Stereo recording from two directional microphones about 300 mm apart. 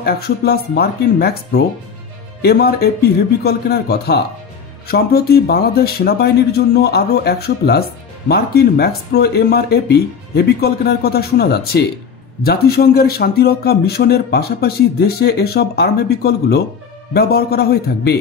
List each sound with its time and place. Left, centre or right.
0.0 s a man's voice: left